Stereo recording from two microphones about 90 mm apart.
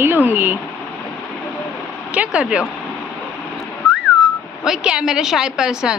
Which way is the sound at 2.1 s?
15° right (ahead or behind).